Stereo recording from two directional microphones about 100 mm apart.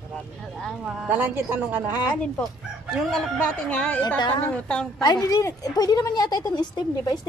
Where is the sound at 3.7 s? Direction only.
15° left (ahead or behind).